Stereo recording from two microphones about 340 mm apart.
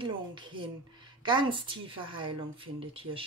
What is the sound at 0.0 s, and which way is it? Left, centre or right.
Speech, centre.